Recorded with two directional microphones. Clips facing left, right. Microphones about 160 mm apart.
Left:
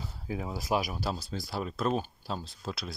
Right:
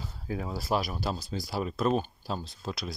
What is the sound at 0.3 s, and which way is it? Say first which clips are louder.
Speech: right 1 dB; 20° left (ahead or behind).